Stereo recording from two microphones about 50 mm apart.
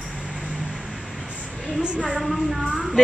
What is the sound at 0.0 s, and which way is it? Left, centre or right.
Vehicle, centre.